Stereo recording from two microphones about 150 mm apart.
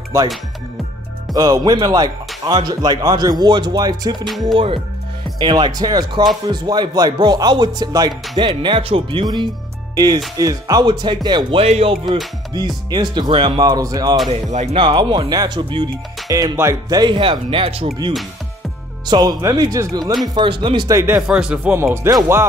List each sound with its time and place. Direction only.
0.1 s speech: 20° right (ahead or behind)
1.3 s speech: 25° right (ahead or behind)
5.4 s speech: 30° right (ahead or behind)
12.5 s speech: 30° right (ahead or behind)
14.3 s speech: 45° right (ahead or behind); by 17.0 s 20° right (ahead or behind)
17.0 s speech: 35° right (ahead or behind)
19.0 s speech: 25° right (ahead or behind)
20.3 s speech: 35° right (ahead or behind)
21.3 s speech: 5° right (ahead or behind)
21.7 s speech: 15° right (ahead or behind)